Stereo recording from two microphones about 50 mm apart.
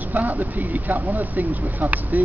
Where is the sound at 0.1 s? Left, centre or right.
Right.